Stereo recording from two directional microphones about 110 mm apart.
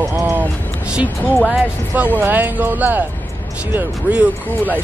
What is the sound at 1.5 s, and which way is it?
Speech, 15° right (ahead or behind).